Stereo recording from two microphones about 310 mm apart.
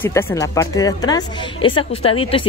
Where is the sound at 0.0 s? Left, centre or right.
Centre.